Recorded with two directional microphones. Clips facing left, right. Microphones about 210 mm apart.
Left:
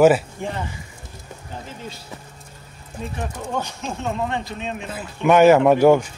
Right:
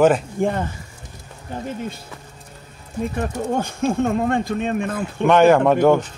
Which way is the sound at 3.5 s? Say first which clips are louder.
Right 9 dB; 50° right (ahead or behind).